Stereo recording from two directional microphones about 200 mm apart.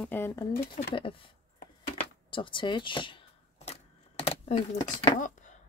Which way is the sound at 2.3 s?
25° left (ahead or behind).